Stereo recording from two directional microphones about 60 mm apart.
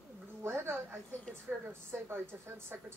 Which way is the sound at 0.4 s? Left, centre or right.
Right.